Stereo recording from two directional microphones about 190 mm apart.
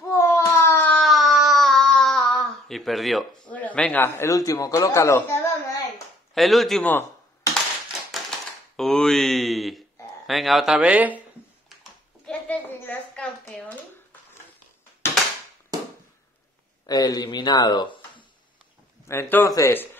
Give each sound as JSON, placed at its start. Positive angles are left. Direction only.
{"t": 0.1, "sound": "a sound", "side_deg": 15}
{"t": 6.3, "sound": "speech", "side_deg": 0}
{"t": 8.7, "sound": "speech", "side_deg": 0}
{"t": 12.3, "sound": "a sound", "side_deg": 10}
{"t": 16.8, "sound": "speech", "side_deg": 20}
{"t": 19.0, "sound": "a man's voice", "side_deg": 10}